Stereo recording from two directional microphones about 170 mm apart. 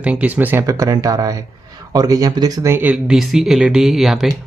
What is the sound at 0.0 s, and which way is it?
Speech, 10° right (ahead or behind).